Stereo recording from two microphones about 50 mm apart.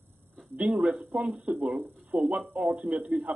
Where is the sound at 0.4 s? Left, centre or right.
Centre.